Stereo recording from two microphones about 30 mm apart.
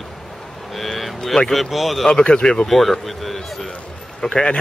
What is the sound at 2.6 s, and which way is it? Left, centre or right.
Speech, centre.